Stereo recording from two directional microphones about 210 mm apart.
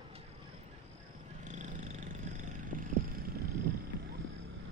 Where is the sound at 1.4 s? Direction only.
35° right (ahead or behind).